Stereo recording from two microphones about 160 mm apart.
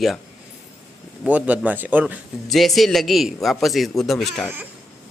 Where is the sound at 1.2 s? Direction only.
10° right (ahead or behind).